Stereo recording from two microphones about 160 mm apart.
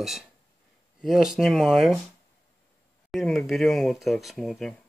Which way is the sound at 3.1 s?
Centre (ahead or behind).